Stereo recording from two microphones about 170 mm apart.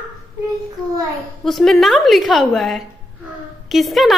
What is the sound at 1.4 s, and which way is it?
A woman's voice, centre (ahead or behind).